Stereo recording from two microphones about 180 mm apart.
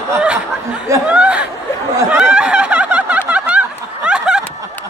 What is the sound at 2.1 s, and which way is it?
Snicker, 5° right (ahead or behind).